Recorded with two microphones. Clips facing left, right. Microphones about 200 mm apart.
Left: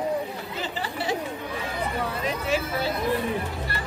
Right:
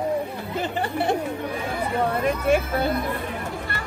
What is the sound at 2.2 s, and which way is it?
Hubbub, 55° right (ahead or behind).